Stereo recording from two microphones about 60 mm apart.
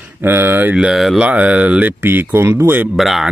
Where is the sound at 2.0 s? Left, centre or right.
Right.